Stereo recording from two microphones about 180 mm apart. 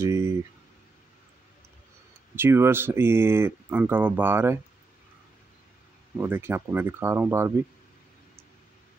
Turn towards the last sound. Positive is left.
turn(degrees=-15)  # may be behind; listen again after turning